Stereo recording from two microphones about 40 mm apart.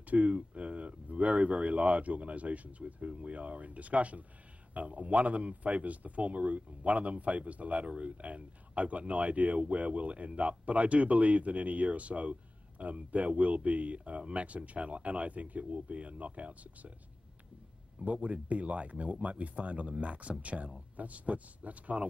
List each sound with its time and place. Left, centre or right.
0.1 s speech: right
7.8 s speech: right
8.2 s speech: right
18.0 s speech: right